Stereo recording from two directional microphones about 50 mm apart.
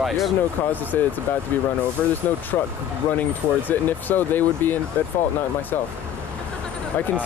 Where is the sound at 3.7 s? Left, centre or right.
Left.